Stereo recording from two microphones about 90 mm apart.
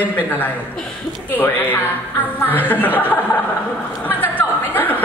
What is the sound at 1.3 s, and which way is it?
Speech, 20° left (ahead or behind).